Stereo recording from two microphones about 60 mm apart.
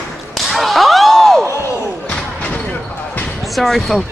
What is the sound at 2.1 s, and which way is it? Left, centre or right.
Slam, centre.